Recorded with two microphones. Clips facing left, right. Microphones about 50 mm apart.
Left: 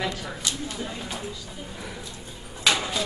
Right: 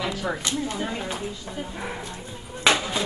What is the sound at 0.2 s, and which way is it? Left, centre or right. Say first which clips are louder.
Speech: right 5 dB; right.